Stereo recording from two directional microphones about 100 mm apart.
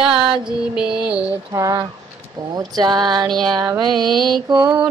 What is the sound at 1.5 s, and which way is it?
Music, 35° right (ahead or behind).